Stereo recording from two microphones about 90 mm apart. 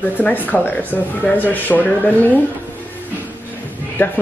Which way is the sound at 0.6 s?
20° left (ahead or behind).